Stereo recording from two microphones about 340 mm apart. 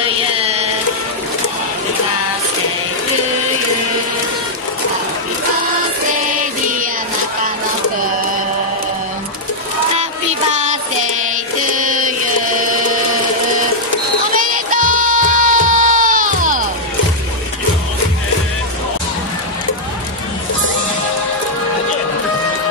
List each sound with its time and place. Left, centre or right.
0.4 s a sound: centre
10.5 s music: right
14.4 s music: right